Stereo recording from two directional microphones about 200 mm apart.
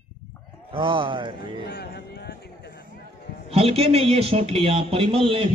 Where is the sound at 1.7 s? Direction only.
55° left (ahead or behind).